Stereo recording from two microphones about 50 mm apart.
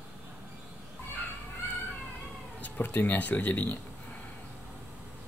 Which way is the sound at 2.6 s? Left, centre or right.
Left.